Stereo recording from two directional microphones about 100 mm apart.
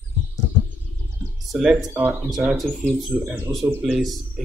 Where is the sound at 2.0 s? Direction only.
15° right (ahead or behind).